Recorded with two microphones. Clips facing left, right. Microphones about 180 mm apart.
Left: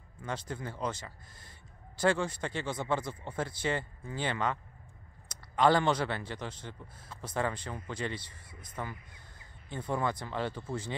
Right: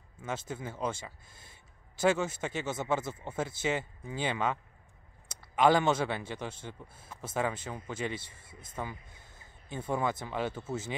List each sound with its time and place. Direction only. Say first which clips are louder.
0.2 s a man's voice: right 1 dB; 5° right (ahead or behind)
5.6 s a man's voice: right 1 dB; 10° right (ahead or behind)
8.5 s speech: even; 25° right (ahead or behind)
9.7 s a man's voice: right 1 dB; 10° right (ahead or behind)